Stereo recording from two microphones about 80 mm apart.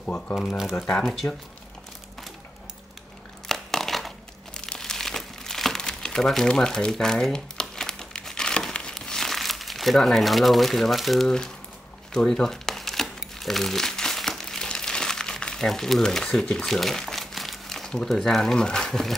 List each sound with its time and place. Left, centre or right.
0.0 s speech: centre
3.4 s crumpling: centre